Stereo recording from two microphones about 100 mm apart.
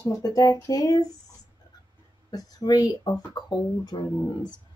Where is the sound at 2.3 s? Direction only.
40° left (ahead or behind).